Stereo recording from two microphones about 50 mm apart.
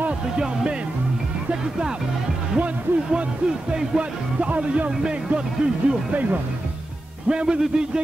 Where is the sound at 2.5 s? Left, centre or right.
Right.